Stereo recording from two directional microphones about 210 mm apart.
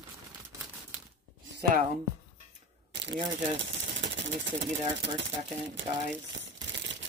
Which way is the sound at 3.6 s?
60° right (ahead or behind).